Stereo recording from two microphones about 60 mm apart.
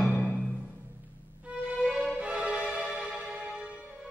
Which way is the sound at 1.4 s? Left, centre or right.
Right.